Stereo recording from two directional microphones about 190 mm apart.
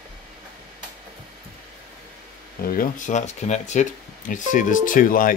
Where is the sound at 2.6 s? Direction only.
50° left (ahead or behind).